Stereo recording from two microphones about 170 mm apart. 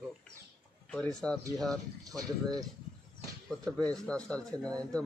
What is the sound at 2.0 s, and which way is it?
Speech, 20° right (ahead or behind).